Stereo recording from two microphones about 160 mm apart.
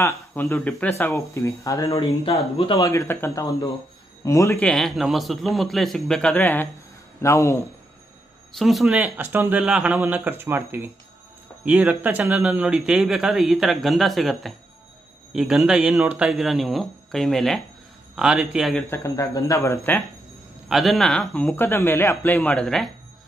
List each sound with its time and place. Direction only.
0.0 s speech: 15° left (ahead or behind)
2.5 s speech: 35° left (ahead or behind)
2.8 s a man's voice: 20° left (ahead or behind)
4.6 s speech: 5° left (ahead or behind)
8.5 s speech: centre (ahead or behind)
18.9 s speech: 20° left (ahead or behind)
20.6 s speech: centre (ahead or behind)